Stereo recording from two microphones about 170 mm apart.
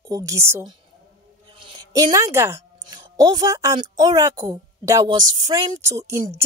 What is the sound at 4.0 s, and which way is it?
A woman's voice, 20° right (ahead or behind).